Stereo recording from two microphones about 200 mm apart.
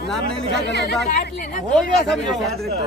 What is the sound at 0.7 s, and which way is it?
Speech, 55° left (ahead or behind).